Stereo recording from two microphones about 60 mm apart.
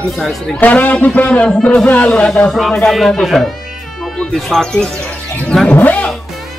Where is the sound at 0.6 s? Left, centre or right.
Left; by 3.3 s centre.